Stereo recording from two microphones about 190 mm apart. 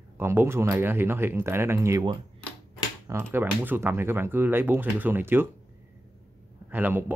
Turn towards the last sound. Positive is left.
turn(degrees=-10)  # may be behind; listen again after turning